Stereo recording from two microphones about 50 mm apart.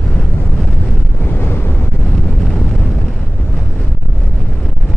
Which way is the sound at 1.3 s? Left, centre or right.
Left.